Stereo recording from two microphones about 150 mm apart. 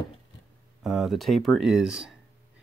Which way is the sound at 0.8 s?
Centre (ahead or behind).